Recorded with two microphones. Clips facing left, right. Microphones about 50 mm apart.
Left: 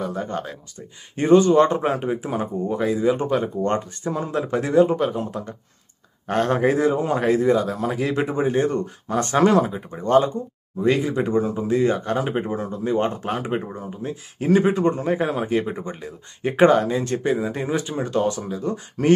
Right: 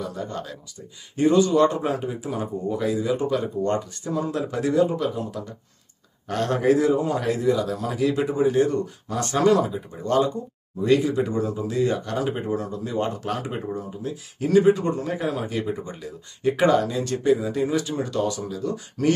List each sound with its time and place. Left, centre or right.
0.0 s speech: left